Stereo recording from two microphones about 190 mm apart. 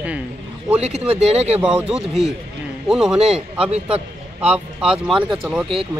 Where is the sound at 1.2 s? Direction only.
35° right (ahead or behind).